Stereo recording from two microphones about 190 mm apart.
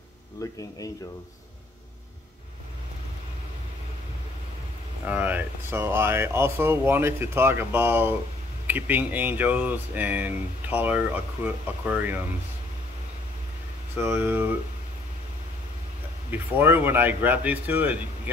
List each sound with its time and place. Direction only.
0.4 s speech: 15° left (ahead or behind)
5.0 s speech: 10° right (ahead or behind)
13.9 s speech: 10° right (ahead or behind)
16.3 s speech: 10° right (ahead or behind)